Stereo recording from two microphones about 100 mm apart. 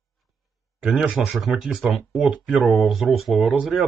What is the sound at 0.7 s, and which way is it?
Speech, 10° right (ahead or behind).